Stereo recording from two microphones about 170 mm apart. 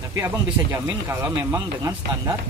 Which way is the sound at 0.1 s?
15° right (ahead or behind).